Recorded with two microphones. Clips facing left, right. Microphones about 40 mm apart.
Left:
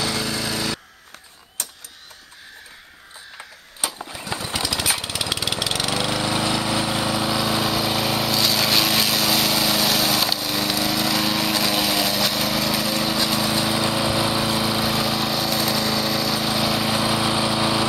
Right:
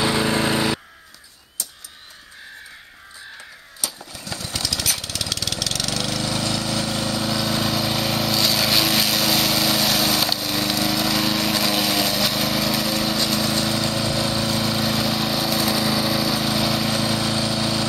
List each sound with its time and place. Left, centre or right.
0.0 s lawn mower: right
3.8 s lawn mower: left